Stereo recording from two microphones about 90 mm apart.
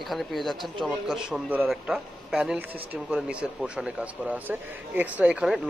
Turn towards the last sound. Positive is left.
turn(degrees=-15)  # may be behind; listen again after turning